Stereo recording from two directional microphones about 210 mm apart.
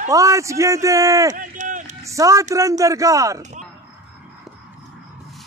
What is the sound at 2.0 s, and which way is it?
A man's voice, 15° right (ahead or behind).